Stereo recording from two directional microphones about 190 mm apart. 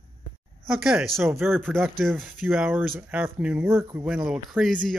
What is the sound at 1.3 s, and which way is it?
Speech, 10° right (ahead or behind).